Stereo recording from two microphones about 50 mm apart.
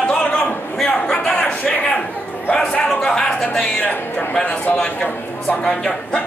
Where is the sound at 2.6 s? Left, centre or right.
Centre.